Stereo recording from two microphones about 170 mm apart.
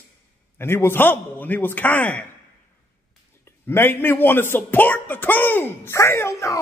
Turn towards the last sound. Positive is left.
turn(degrees=15)  # may be behind; listen again after turning